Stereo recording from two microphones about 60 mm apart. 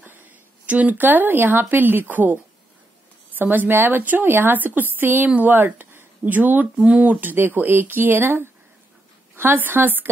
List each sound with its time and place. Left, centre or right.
0.7 s speech: right